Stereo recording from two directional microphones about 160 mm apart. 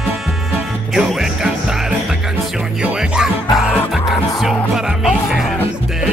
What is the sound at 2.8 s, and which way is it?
Music, 5° right (ahead or behind).